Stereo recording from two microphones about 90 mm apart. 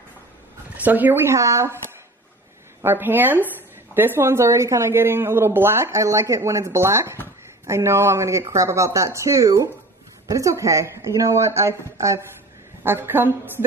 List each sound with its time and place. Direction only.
0.7 s speech: 20° right (ahead or behind)
2.8 s speech: 25° right (ahead or behind)